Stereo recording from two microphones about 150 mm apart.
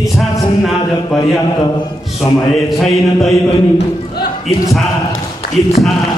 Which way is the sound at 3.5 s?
30° left (ahead or behind).